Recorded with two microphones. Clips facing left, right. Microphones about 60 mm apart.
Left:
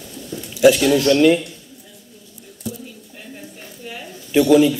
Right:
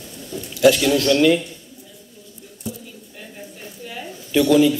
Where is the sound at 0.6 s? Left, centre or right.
Centre.